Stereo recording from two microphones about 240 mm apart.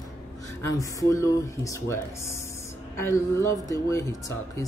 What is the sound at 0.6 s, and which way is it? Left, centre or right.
Speech, centre.